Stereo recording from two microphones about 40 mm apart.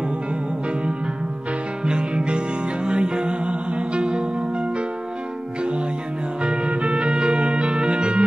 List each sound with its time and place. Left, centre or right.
1.9 s music: right
6.4 s music: right